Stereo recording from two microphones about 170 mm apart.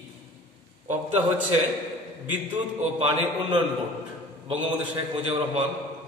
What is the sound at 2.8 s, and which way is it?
Speech, 40° right (ahead or behind).